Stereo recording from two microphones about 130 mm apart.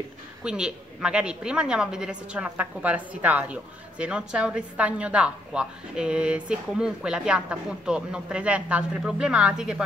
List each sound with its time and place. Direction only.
0.4 s a woman's voice: 5° right (ahead or behind)